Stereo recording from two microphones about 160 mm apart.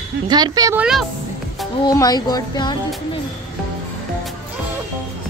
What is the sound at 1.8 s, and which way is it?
Speech, 25° left (ahead or behind).